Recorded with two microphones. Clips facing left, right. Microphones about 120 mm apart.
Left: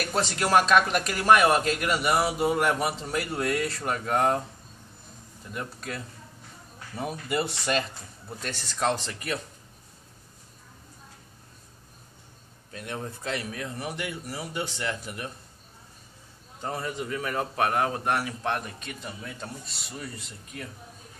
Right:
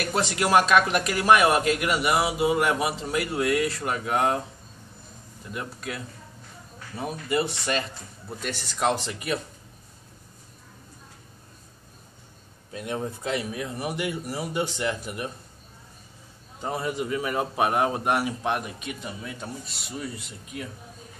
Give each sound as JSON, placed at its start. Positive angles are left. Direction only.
{"t": 0.0, "sound": "speech", "side_deg": -5}
{"t": 5.5, "sound": "a man's voice", "side_deg": -5}
{"t": 12.7, "sound": "a man's voice", "side_deg": -15}
{"t": 16.6, "sound": "a man's voice", "side_deg": -15}